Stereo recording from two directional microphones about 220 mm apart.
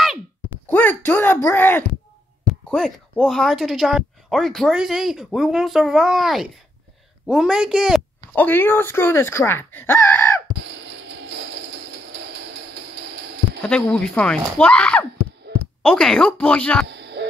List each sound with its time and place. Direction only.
0.7 s speech: 10° left (ahead or behind)
8.3 s speech: 10° left (ahead or behind)
9.8 s wail: 10° left (ahead or behind)
13.6 s speech: 5° left (ahead or behind)
15.5 s a sound: 45° right (ahead or behind)
15.8 s speech: 5° left (ahead or behind)
16.8 s a sound: 50° right (ahead or behind)